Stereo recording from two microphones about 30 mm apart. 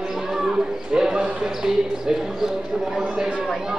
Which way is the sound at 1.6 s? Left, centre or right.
Centre.